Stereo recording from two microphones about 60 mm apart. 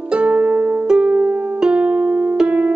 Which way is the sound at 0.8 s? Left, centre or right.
Centre.